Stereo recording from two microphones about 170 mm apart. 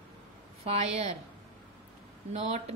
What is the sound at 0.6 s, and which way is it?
Speech, 40° right (ahead or behind).